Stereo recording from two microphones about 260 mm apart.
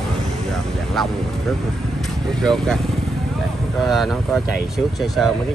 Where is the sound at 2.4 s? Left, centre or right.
Centre.